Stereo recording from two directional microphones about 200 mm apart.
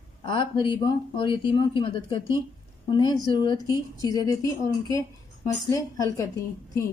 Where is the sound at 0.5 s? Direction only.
15° right (ahead or behind).